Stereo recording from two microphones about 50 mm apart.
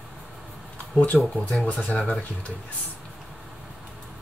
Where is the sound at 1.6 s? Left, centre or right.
Left.